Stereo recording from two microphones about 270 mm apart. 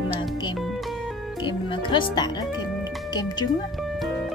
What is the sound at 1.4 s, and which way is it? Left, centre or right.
Music, centre.